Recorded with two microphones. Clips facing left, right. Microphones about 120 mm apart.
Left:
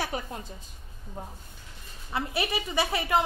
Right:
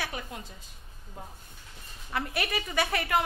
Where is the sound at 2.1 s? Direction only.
20° left (ahead or behind).